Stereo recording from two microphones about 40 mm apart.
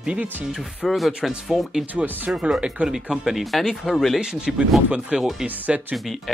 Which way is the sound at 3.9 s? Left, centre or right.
Centre.